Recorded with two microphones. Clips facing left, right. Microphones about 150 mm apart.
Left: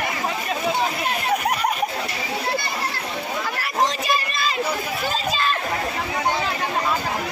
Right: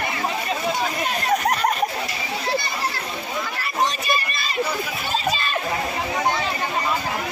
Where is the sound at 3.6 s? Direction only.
90° left.